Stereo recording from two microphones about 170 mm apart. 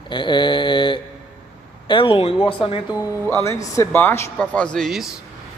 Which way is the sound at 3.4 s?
20° left (ahead or behind).